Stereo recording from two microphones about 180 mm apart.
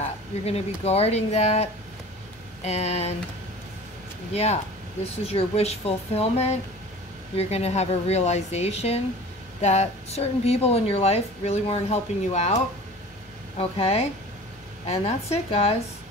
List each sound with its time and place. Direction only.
0.5 s a woman's voice: 35° left (ahead or behind)
4.3 s a woman's voice: 35° left (ahead or behind)
13.6 s a woman's voice: 35° left (ahead or behind)